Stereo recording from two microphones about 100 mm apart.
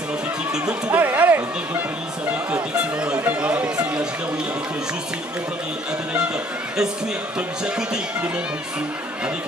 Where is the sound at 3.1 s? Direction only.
15° right (ahead or behind).